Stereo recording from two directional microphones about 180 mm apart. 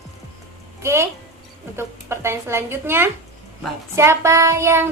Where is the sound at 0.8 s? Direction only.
15° right (ahead or behind).